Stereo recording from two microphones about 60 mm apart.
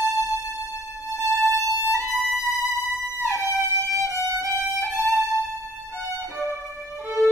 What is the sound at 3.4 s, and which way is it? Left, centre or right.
Violin, right.